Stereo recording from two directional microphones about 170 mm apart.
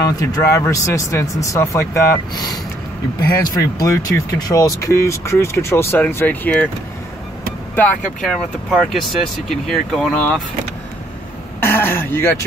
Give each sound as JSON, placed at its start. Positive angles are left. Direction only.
{"t": 0.0, "sound": "speech", "side_deg": 20}
{"t": 7.7, "sound": "speech", "side_deg": 10}
{"t": 11.6, "sound": "throat clearing", "side_deg": 15}